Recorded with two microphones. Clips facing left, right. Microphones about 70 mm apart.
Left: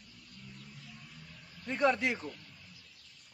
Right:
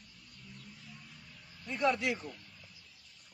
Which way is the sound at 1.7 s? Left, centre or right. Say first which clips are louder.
Left 2 dB; left.